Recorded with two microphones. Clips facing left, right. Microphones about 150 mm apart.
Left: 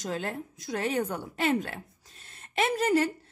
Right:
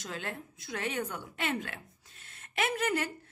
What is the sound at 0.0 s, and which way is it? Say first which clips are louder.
A woman's voice: left 7 dB; 40° left (ahead or behind).